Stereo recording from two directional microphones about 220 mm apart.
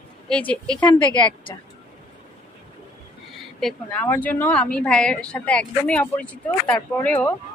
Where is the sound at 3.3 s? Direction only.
Centre (ahead or behind).